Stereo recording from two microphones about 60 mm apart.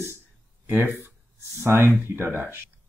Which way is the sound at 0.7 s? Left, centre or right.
Right.